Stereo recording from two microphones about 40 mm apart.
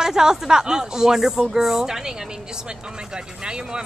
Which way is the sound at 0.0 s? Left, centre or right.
Centre.